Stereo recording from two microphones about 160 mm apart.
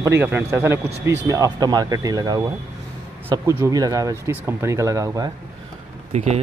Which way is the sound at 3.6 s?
20° right (ahead or behind).